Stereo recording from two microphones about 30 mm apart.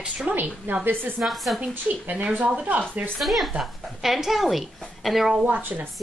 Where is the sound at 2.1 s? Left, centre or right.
Right.